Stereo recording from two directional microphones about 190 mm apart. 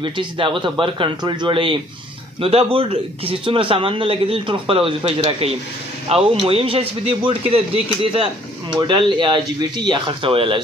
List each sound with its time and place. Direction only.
0.0 s speech: 25° right (ahead or behind)